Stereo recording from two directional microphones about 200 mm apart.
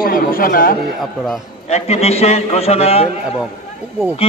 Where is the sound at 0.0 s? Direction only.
45° left (ahead or behind).